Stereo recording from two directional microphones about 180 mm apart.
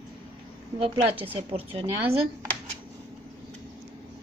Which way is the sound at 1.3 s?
30° right (ahead or behind).